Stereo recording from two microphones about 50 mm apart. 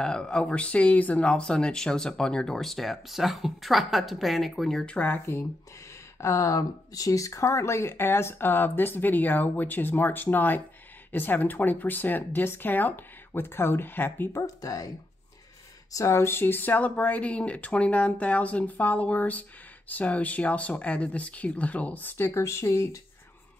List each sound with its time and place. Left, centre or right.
0.0 s speech: centre
1.2 s speech: centre
6.2 s speech: left
16.0 s speech: left
22.0 s speech: left
22.3 s speech: left